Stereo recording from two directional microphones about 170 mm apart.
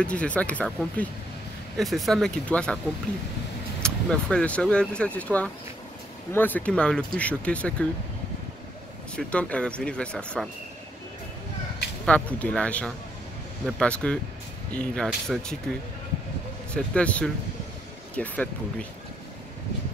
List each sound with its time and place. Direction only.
0.0 s speech: 5° left (ahead or behind)
3.8 s speech: 5° left (ahead or behind)
9.1 s speech: 5° left (ahead or behind)
12.1 s speech: 10° left (ahead or behind)
16.7 s speech: 5° left (ahead or behind)